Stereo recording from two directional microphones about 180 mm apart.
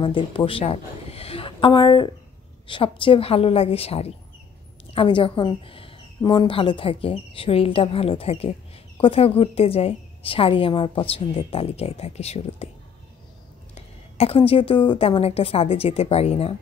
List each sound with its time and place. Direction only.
0.0 s a woman's voice: 30° left (ahead or behind)
13.7 s a woman's voice: 35° left (ahead or behind)